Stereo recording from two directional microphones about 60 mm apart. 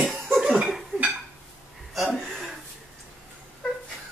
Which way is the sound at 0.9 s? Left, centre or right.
Right.